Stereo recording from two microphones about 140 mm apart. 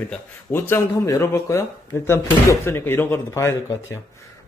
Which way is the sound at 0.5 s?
15° left (ahead or behind).